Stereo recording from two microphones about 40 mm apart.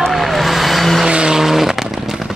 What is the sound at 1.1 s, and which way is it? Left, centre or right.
Vehicle, right.